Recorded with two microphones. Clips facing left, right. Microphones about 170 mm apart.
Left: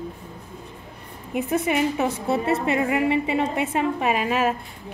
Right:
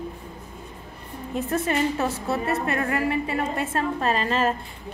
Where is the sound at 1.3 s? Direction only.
15° left (ahead or behind).